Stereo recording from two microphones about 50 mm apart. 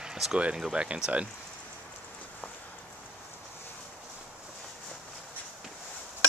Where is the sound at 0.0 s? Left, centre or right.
Centre.